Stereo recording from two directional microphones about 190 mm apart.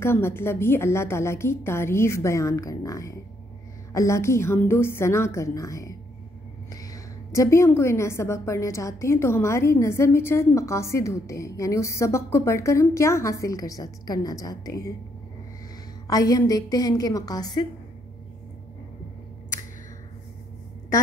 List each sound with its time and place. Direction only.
0.0 s a woman's voice: 10° left (ahead or behind)
16.1 s a woman's voice: 20° left (ahead or behind)